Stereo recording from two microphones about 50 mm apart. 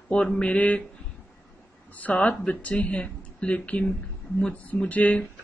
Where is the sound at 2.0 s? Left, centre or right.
Left.